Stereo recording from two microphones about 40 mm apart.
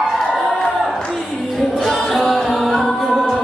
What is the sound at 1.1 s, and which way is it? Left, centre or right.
Music, centre.